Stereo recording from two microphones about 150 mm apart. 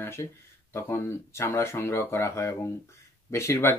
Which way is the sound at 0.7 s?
15° left (ahead or behind).